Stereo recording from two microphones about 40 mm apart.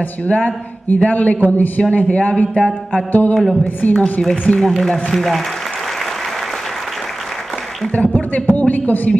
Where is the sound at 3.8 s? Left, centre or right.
Left.